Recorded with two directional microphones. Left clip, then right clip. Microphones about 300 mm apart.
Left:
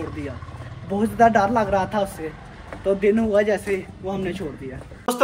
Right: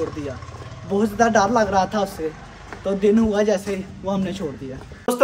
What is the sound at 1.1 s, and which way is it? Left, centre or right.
Speech, centre.